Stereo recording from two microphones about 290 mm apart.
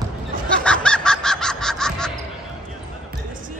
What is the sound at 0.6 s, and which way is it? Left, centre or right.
Fowl, centre.